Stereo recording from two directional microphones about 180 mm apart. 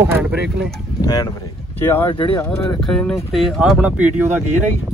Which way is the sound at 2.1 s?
25° left (ahead or behind).